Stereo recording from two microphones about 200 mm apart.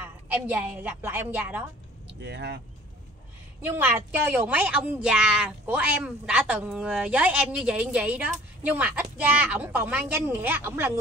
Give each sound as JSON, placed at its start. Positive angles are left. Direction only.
{"t": 0.0, "sound": "a woman's voice", "side_deg": -10}
{"t": 2.0, "sound": "speech", "side_deg": -55}
{"t": 3.6, "sound": "speech", "side_deg": -10}